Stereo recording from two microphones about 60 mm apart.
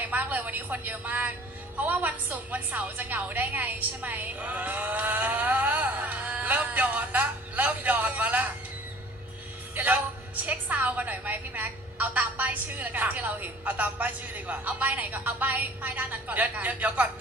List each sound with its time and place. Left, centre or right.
0.0 s a woman's voice: right
9.8 s music: right
10.4 s a woman's voice: right